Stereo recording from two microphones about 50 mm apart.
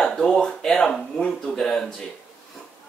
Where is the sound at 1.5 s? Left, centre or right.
Centre.